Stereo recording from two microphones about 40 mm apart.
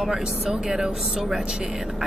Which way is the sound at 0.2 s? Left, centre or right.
Centre.